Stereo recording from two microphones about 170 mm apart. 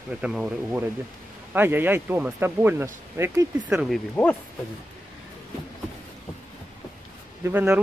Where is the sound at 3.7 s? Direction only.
5° right (ahead or behind).